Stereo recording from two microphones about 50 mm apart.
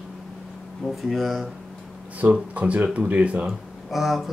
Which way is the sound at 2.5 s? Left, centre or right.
Right.